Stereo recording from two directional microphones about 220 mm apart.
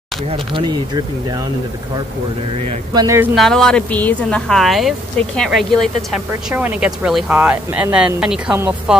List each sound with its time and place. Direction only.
0.6 s speech: 20° right (ahead or behind)
2.9 s speech: 15° right (ahead or behind)
3.3 s speech: centre (ahead or behind)